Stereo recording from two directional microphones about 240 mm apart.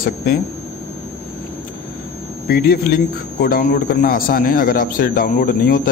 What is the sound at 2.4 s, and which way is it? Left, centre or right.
A man's voice, left.